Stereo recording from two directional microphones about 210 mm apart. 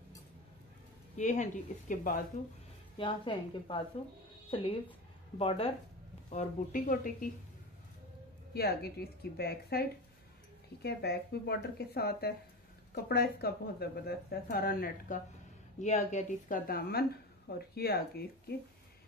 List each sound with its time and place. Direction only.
1.1 s speech: 35° left (ahead or behind)
3.0 s a woman's voice: 25° left (ahead or behind); by 7.2 s 40° left (ahead or behind)
8.5 s speech: 50° left (ahead or behind)
15.8 s speech: 35° left (ahead or behind)